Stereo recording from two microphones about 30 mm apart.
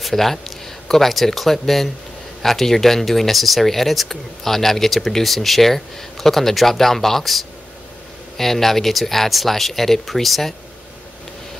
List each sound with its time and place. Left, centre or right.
0.0 s speech: centre